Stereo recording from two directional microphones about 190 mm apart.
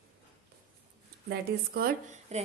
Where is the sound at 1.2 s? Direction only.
55° right (ahead or behind).